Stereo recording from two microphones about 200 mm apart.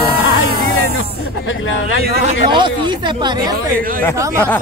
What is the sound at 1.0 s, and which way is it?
Speech, 75° left (ahead or behind).